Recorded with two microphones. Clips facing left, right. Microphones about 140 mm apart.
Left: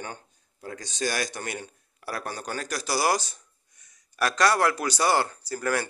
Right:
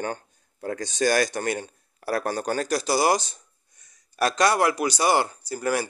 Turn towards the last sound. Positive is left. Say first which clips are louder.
# right 2 dB
turn(degrees=-15)  # may be behind; listen again after turning